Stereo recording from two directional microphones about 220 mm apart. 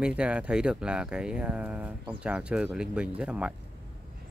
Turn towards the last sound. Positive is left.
turn(degrees=-5)  # may be behind; listen again after turning